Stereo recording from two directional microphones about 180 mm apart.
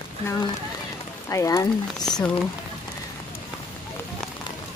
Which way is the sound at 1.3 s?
15° left (ahead or behind).